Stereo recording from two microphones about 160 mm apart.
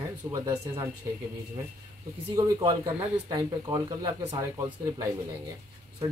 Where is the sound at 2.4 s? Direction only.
20° right (ahead or behind).